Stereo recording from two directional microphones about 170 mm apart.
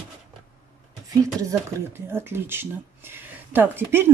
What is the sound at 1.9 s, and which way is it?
Speech, 15° right (ahead or behind).